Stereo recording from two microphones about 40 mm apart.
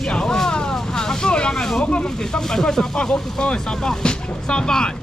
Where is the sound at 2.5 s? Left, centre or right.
Centre.